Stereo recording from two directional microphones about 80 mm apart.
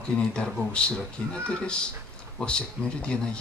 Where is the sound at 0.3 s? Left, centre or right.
Centre.